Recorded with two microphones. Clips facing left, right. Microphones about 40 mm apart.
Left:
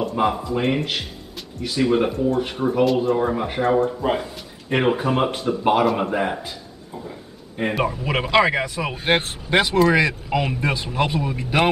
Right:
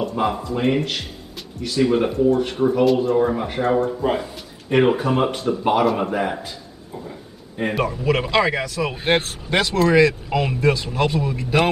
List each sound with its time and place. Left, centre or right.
0.0 s speech: centre
7.8 s speech: centre
8.9 s speech: centre
9.2 s speech: centre